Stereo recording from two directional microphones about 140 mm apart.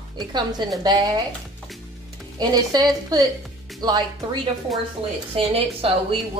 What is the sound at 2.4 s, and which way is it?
A woman's voice, 30° right (ahead or behind).